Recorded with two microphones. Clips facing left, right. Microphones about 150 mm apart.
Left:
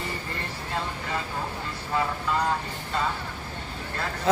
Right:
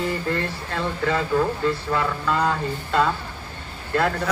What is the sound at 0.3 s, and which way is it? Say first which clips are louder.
Speech: right 7 dB; 90° right.